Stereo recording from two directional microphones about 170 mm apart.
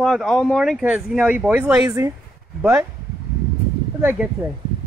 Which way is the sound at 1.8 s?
15° right (ahead or behind).